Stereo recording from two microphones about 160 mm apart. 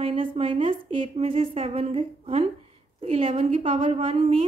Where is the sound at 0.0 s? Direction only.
35° right (ahead or behind).